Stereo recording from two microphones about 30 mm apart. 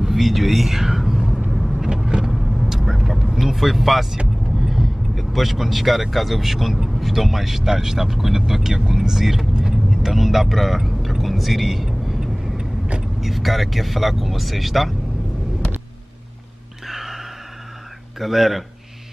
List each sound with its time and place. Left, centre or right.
0.0 s speech: centre
1.5 s vehicle: centre
3.3 s speech: centre
9.6 s vehicle: right
10.0 s speech: centre
11.0 s vehicle: centre
12.5 s vehicle: right
13.2 s speech: centre
16.8 s a sound: centre
18.2 s speech: centre